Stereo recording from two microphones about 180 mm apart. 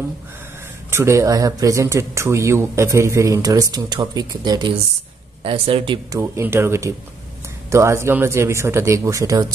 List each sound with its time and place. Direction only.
0.8 s speech: 15° right (ahead or behind); by 5.9 s 30° right (ahead or behind)
6.1 s speech: 15° right (ahead or behind)